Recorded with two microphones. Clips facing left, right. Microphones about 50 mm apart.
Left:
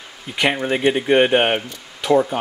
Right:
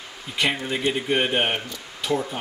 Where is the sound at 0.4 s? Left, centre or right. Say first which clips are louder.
Left 5 dB; left.